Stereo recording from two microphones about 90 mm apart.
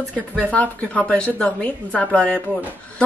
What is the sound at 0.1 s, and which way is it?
A woman's voice, 15° left (ahead or behind).